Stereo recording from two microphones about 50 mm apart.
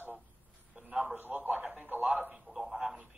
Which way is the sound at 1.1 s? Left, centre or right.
Right.